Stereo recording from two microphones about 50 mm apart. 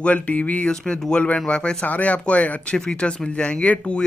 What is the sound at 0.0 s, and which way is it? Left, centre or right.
Speech, left.